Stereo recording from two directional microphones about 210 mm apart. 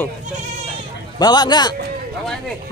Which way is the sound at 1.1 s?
20° left (ahead or behind).